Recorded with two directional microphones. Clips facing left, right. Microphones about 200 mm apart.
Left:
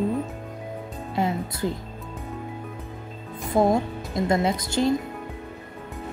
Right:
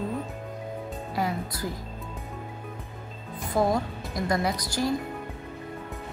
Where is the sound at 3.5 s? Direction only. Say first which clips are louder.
Left 4 dB; 25° left (ahead or behind).